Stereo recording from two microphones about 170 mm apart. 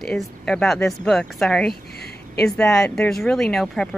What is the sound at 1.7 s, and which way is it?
Speech, 70° left (ahead or behind).